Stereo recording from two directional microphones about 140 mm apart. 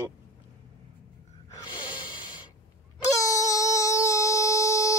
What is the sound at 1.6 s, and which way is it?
Snort, 30° left (ahead or behind).